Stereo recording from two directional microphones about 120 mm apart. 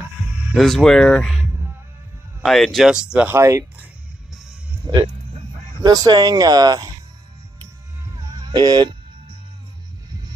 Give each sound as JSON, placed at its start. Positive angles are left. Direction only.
{"t": 0.6, "sound": "speech", "side_deg": 0}
{"t": 3.3, "sound": "speech", "side_deg": -20}
{"t": 4.9, "sound": "speech", "side_deg": -30}
{"t": 8.1, "sound": "music", "side_deg": -35}